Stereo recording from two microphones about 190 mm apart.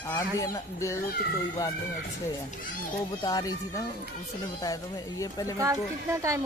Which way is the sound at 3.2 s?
20° left (ahead or behind).